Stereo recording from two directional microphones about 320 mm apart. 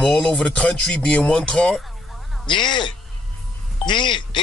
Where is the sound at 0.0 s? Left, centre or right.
Centre.